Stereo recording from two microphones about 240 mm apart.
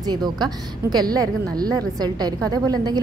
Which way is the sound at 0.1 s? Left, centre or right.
Centre.